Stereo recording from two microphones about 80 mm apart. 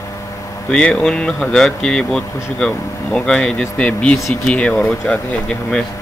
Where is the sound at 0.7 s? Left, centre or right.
Centre.